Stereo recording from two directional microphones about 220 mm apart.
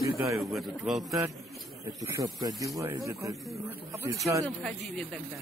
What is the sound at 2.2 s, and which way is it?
Speech, 15° right (ahead or behind).